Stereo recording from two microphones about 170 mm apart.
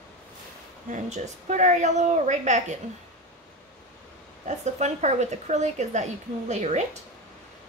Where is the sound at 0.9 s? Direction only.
45° right (ahead or behind).